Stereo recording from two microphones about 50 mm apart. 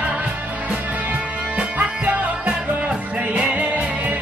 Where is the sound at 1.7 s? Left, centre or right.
Right.